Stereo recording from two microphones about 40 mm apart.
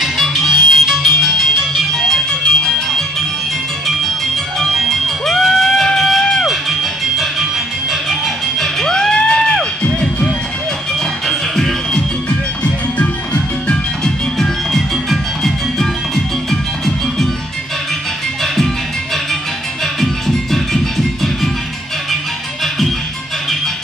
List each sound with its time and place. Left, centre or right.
0.0 s music: centre
1.9 s music: centre
4.7 s music: centre
6.4 s music: centre
8.5 s music: centre
11.2 s music: centre
12.3 s music: left
14.0 s music: centre
20.0 s music: centre